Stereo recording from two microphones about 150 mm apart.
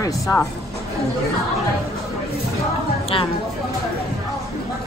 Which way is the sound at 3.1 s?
35° left (ahead or behind).